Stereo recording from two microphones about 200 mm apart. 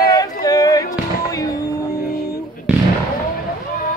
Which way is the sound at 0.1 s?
20° left (ahead or behind).